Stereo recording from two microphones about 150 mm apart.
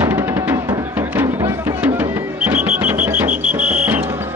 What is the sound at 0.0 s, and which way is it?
Music, 15° right (ahead or behind).